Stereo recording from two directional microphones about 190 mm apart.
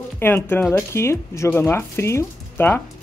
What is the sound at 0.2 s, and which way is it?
A woman's voice, 10° left (ahead or behind).